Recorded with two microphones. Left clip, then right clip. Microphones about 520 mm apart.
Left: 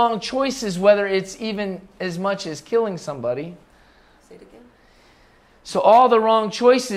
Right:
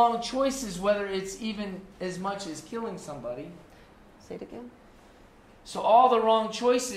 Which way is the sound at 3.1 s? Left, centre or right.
Left.